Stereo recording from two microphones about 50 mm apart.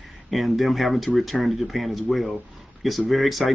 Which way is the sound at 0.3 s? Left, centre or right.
Centre.